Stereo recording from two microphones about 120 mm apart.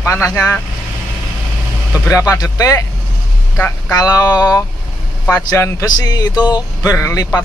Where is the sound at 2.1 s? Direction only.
30° left (ahead or behind).